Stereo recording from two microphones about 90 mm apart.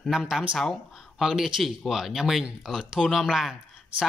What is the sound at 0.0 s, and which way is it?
Speech, centre (ahead or behind).